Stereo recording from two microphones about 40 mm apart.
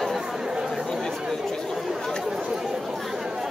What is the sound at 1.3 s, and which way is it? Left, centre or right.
Chatter, centre.